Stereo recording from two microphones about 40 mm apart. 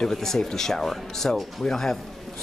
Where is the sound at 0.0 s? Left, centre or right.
Centre.